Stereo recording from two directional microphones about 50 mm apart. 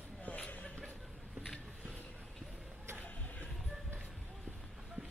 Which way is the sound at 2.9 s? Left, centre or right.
Left.